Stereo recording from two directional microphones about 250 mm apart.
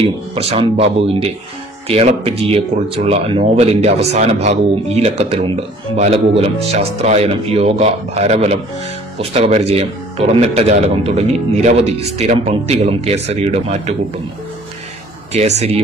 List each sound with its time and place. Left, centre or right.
0.0 s speech: right
15.3 s speech: right